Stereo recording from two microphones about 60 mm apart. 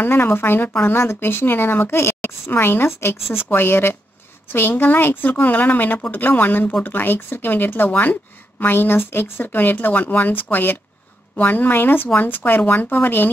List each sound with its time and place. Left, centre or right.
0.0 s speech: left